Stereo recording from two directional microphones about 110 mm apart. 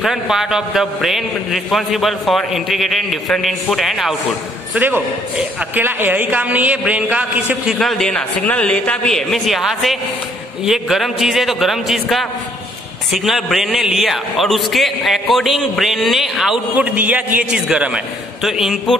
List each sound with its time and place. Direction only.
0.0 s a man's voice: 5° right (ahead or behind)
4.7 s a man's voice: 15° right (ahead or behind)
7.8 s a man's voice: 5° left (ahead or behind)
16.7 s a man's voice: 15° right (ahead or behind)